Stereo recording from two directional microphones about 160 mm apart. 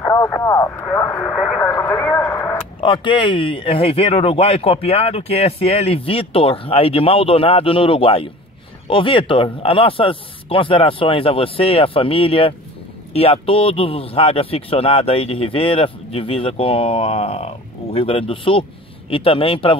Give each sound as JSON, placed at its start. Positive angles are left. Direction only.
{"t": 0.0, "sound": "speech", "side_deg": 15}
{"t": 1.3, "sound": "speech", "side_deg": 5}
{"t": 1.7, "sound": "speech", "side_deg": 15}
{"t": 2.8, "sound": "speech", "side_deg": 30}